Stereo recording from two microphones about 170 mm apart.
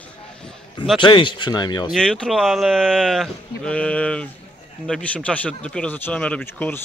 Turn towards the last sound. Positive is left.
turn(degrees=10)  # may be behind; listen again after turning